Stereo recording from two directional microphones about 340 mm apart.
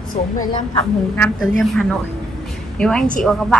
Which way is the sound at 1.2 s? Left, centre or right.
Centre.